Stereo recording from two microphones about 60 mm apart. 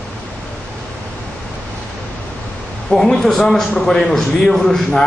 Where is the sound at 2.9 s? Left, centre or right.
Centre.